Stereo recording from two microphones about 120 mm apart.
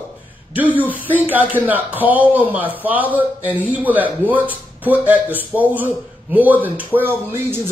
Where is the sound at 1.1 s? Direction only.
15° right (ahead or behind).